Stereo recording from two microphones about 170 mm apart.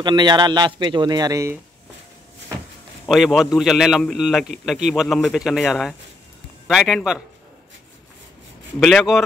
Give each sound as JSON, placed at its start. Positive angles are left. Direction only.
{"t": 0.0, "sound": "a man's voice", "side_deg": -25}
{"t": 3.1, "sound": "a man's voice", "side_deg": 0}
{"t": 8.7, "sound": "a man's voice", "side_deg": 0}